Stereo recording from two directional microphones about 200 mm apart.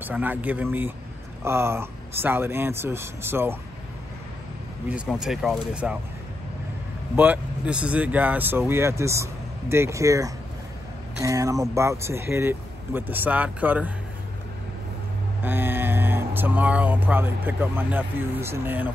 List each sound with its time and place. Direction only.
0.0 s speech: 10° right (ahead or behind)
4.8 s speech: 5° right (ahead or behind)
7.2 s speech: 5° right (ahead or behind)
15.4 s speech: 10° right (ahead or behind)